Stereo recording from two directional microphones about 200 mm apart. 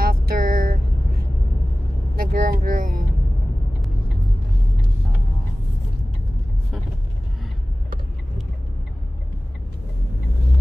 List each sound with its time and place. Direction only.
0.0 s vehicle: 45° right (ahead or behind)